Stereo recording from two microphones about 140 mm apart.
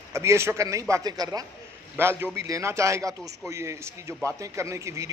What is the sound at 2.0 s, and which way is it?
A man's voice, 15° right (ahead or behind).